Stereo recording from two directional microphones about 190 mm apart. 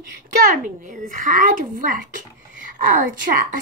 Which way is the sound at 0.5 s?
45° right (ahead or behind).